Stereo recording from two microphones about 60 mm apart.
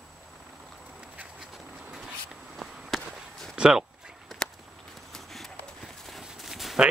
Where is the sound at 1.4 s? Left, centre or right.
Centre.